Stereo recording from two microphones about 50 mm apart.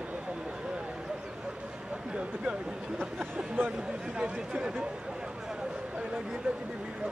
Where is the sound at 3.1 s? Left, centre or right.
Right.